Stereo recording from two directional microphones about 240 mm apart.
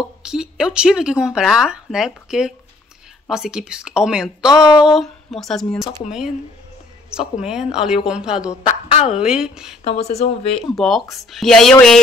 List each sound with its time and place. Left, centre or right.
0.2 s speech: centre
4.5 s a sound: centre
4.7 s speech: centre
7.4 s speech: centre
8.6 s speech: left
9.1 s speech: centre
10.0 s speech: left
10.8 s speech: centre